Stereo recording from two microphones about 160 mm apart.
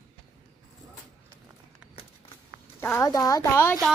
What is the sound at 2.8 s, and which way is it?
Speech, 15° left (ahead or behind).